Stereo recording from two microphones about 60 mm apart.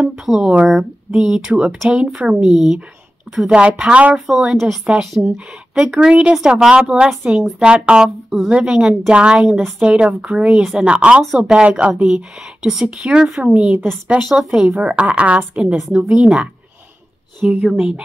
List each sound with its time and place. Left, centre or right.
0.2 s a woman's voice: centre
4.3 s a woman's voice: centre
9.5 s a woman's voice: centre
9.8 s a woman's voice: centre
11.9 s a woman's voice: centre
13.5 s a woman's voice: centre
14.4 s a woman's voice: centre; by 15.7 s right
15.7 s a woman's voice: centre
16.2 s a woman's voice: centre